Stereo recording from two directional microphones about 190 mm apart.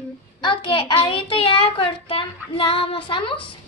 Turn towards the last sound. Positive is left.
turn(degrees=25)  # may be behind; listen again after turning